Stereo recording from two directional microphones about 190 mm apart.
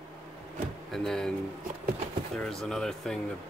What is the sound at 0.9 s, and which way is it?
Speech, centre (ahead or behind).